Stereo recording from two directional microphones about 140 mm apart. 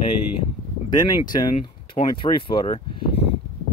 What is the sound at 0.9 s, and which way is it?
Speech, 30° left (ahead or behind).